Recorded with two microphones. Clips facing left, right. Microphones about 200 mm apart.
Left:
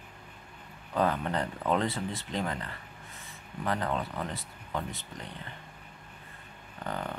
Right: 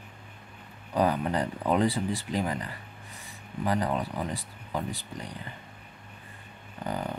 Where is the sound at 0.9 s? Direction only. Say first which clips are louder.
Right 3 dB; 15° right (ahead or behind).